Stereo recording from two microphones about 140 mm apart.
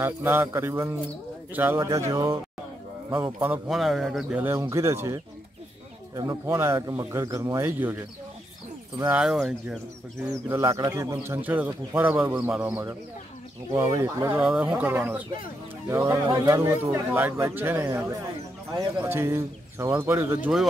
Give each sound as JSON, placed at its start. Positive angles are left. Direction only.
{"t": 0.0, "sound": "a man's voice", "side_deg": -15}
{"t": 3.6, "sound": "a man's voice", "side_deg": 0}
{"t": 4.4, "sound": "a man's voice", "side_deg": -20}
{"t": 9.0, "sound": "speech", "side_deg": -10}
{"t": 10.5, "sound": "a man's voice", "side_deg": -20}
{"t": 14.4, "sound": "speech", "side_deg": -5}
{"t": 18.9, "sound": "speech", "side_deg": -15}